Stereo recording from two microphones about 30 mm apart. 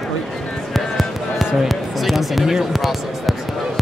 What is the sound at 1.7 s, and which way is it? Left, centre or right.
Speech, centre.